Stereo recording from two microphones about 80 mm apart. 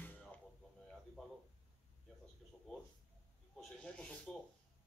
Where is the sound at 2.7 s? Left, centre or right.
Centre.